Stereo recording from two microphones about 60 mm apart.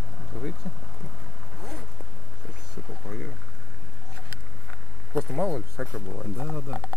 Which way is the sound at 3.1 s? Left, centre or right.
Centre.